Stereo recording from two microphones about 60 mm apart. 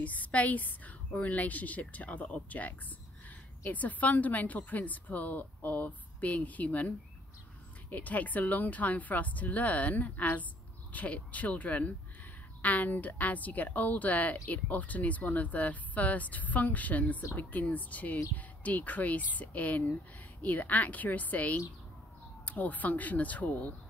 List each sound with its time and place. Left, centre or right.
0.0 s speech: left
7.9 s speech: left